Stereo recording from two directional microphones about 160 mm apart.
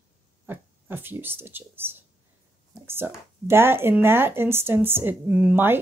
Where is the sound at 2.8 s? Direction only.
15° right (ahead or behind).